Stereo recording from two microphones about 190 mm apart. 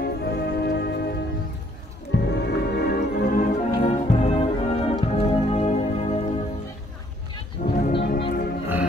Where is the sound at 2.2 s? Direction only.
65° left (ahead or behind); by 6.1 s 35° left (ahead or behind).